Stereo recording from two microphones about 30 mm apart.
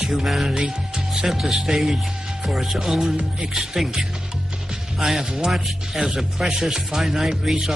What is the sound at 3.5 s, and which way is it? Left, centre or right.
Speech, centre.